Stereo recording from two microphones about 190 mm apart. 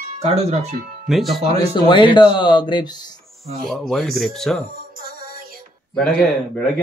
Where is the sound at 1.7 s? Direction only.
25° left (ahead or behind).